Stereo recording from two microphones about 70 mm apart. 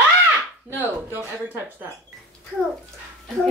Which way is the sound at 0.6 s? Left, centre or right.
Right.